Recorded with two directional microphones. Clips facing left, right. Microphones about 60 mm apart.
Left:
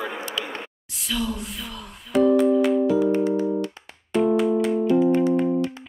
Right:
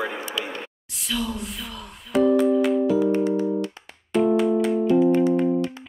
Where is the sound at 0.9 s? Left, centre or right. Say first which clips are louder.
Left 1 dB; centre.